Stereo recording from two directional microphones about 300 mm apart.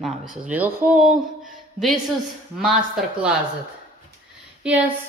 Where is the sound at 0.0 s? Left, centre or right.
Centre.